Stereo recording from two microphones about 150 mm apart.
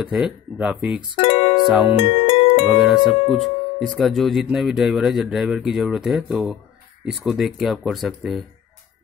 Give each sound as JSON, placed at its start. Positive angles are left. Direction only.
{"t": 0.0, "sound": "speech", "side_deg": -5}
{"t": 1.1, "sound": "music", "side_deg": 40}
{"t": 2.7, "sound": "speech", "side_deg": 0}